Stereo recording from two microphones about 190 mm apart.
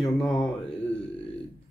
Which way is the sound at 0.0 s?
Centre (ahead or behind).